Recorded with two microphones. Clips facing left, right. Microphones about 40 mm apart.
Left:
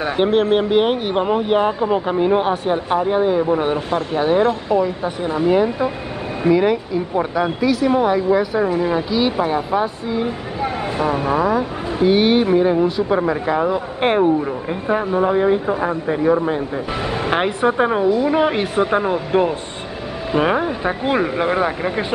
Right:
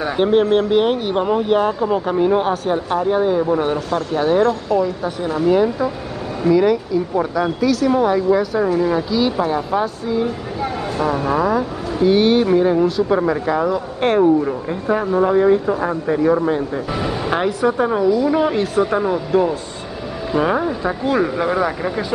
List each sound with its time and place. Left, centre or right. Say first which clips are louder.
0.0 s speech: right 1 dB; centre
17.2 s speech: left 1 dB; left